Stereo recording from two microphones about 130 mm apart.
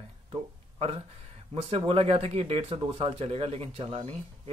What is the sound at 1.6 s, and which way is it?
Speech, 50° right (ahead or behind).